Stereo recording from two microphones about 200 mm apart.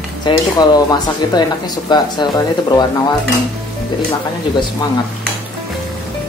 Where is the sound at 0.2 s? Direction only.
20° left (ahead or behind).